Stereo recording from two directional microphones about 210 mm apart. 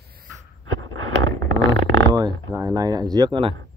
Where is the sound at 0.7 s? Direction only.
70° right (ahead or behind).